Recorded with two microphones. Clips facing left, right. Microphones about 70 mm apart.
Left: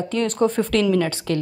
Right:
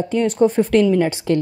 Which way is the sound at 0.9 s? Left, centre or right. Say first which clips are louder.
Right 4 dB; right.